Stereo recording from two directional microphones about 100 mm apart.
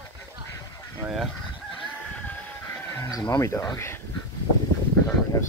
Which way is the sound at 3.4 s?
30° left (ahead or behind).